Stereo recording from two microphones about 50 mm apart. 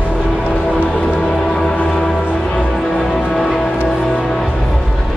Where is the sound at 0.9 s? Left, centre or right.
Centre.